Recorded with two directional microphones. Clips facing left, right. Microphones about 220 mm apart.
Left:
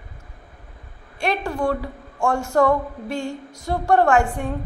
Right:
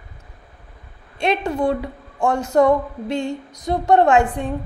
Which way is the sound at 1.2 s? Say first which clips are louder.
Right 3 dB; 20° right (ahead or behind).